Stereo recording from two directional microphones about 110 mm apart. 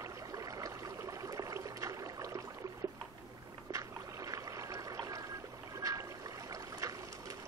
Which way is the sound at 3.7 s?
30° right (ahead or behind).